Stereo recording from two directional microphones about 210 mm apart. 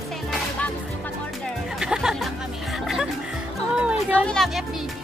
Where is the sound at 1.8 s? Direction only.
5° right (ahead or behind).